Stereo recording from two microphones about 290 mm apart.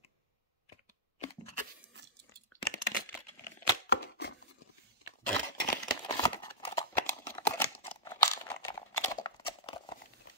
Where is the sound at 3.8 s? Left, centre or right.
Left.